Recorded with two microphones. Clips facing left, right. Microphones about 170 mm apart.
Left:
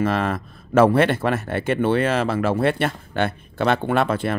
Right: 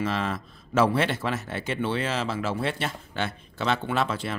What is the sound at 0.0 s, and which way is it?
Speech, 55° left (ahead or behind).